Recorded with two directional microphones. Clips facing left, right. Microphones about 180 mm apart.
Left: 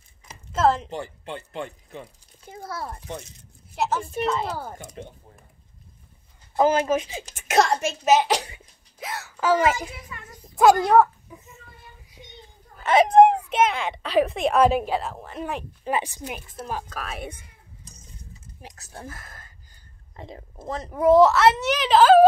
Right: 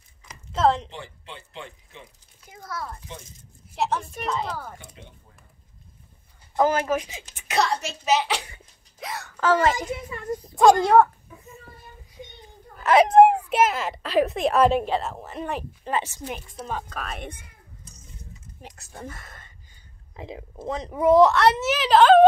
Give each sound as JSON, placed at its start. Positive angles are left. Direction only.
{"t": 0.5, "sound": "a sound", "side_deg": 5}
{"t": 0.8, "sound": "speech", "side_deg": 45}
{"t": 2.4, "sound": "a child's voice", "side_deg": 30}
{"t": 3.1, "sound": "speech", "side_deg": 70}
{"t": 3.7, "sound": "a woman's voice", "side_deg": 0}
{"t": 4.7, "sound": "speech", "side_deg": 45}
{"t": 6.5, "sound": "a child's voice", "side_deg": 20}
{"t": 7.1, "sound": "speech", "side_deg": 35}
{"t": 9.0, "sound": "a woman's voice", "side_deg": 0}
{"t": 10.1, "sound": "a woman's voice", "side_deg": -35}
{"t": 10.5, "sound": "speech", "side_deg": 0}
{"t": 11.3, "sound": "a sound", "side_deg": 15}
{"t": 12.7, "sound": "a woman's voice", "side_deg": 0}
{"t": 18.6, "sound": "speech", "side_deg": 0}